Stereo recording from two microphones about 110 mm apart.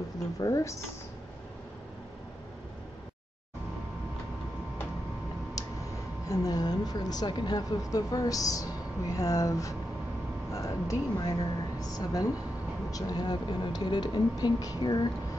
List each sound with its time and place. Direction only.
0.4 s speech: 30° left (ahead or behind)
6.2 s a woman's voice: 35° left (ahead or behind)